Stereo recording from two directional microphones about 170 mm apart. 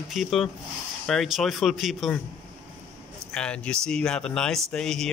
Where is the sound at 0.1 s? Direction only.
Centre (ahead or behind).